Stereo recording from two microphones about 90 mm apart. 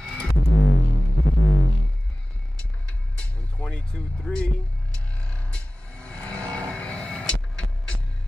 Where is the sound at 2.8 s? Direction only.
10° left (ahead or behind).